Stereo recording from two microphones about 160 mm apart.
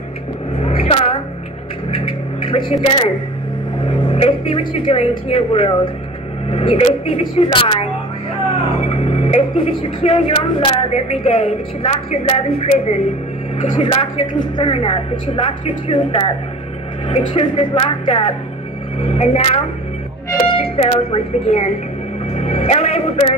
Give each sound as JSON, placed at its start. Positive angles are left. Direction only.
{"t": 0.6, "sound": "vehicle", "side_deg": 40}
{"t": 1.9, "sound": "a sound", "side_deg": 35}
{"t": 3.8, "sound": "vehicle", "side_deg": 35}
{"t": 5.5, "sound": "speech", "side_deg": 35}
{"t": 22.3, "sound": "music", "side_deg": 40}